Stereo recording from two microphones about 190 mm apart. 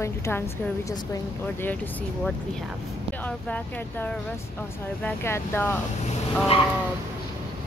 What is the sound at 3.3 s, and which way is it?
Speech, 5° left (ahead or behind).